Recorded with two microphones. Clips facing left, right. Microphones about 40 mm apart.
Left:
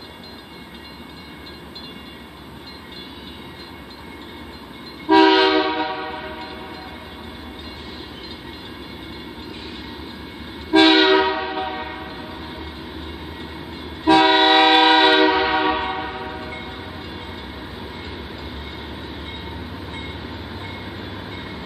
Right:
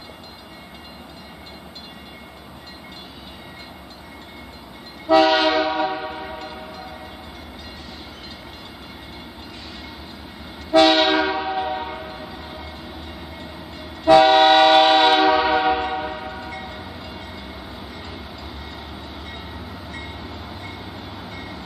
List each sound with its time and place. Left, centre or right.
5.0 s train: left
10.7 s train: left
13.4 s train: left
20.6 s train: left